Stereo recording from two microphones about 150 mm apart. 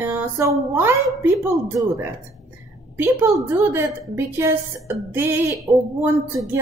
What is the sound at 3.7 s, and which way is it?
A woman's voice, 15° right (ahead or behind).